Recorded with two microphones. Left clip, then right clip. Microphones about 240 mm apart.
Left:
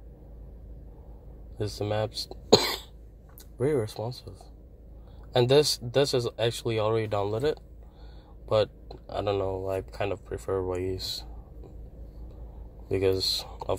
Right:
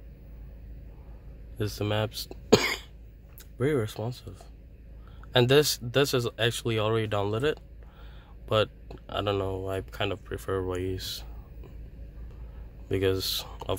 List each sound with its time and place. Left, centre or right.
1.6 s speech: right
3.5 s speech: centre
5.5 s speech: centre
12.8 s speech: centre